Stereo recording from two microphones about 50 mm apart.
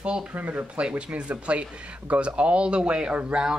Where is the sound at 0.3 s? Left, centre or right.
Right.